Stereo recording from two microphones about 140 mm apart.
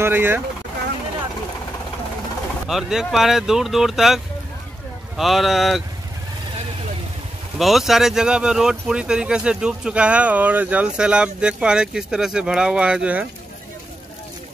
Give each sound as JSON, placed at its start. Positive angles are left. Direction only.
{"t": 0.0, "sound": "speech", "side_deg": -15}
{"t": 2.7, "sound": "speech", "side_deg": -5}
{"t": 7.5, "sound": "speech", "side_deg": 0}